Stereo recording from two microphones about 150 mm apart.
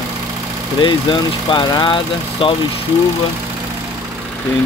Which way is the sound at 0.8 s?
30° left (ahead or behind).